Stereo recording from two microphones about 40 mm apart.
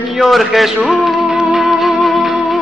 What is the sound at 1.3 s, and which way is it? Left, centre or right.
Music, centre.